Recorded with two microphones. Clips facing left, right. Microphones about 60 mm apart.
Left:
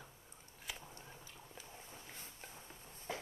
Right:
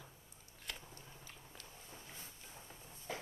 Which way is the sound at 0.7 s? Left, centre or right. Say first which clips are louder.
Left 1 dB; centre.